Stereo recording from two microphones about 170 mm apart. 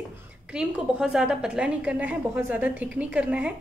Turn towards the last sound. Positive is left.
turn(degrees=-10)  # may be behind; listen again after turning